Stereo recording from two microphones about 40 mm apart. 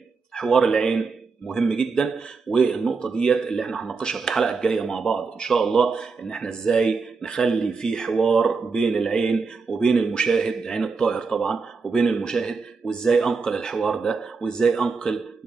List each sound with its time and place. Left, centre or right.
0.4 s speech: centre